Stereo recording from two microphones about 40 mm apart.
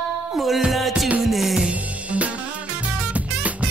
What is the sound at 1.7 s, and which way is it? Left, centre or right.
Music, right.